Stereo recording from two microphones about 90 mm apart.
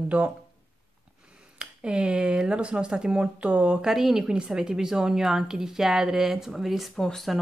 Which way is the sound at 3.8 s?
5° right (ahead or behind).